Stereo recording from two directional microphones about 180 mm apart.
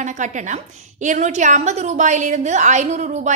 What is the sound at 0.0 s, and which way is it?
A woman's voice, 45° right (ahead or behind).